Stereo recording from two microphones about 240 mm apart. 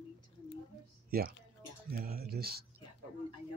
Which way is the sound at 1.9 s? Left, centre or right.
Right.